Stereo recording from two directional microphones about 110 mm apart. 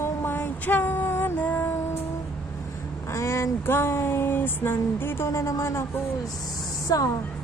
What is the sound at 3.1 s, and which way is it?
Speech, 25° left (ahead or behind).